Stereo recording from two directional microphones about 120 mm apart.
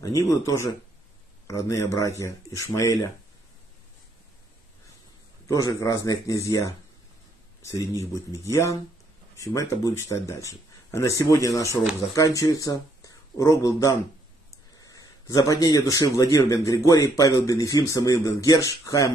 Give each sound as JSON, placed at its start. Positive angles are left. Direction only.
{"t": 0.2, "sound": "speech", "side_deg": 25}
{"t": 5.5, "sound": "speech", "side_deg": 30}